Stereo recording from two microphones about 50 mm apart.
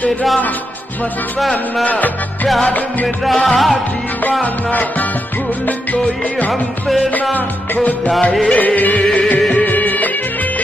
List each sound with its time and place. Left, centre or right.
3.4 s music: centre
6.9 s music: centre
7.3 s music: left
8.2 s music: left
8.5 s music: left